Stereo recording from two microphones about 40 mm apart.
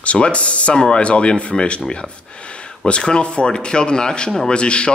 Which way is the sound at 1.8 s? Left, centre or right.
Left.